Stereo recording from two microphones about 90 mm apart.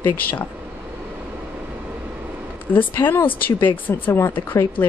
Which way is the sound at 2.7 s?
25° left (ahead or behind).